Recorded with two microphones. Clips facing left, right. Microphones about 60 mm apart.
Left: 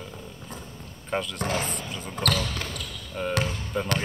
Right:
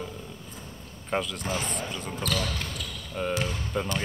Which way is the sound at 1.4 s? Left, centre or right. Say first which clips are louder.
Left 3 dB; left.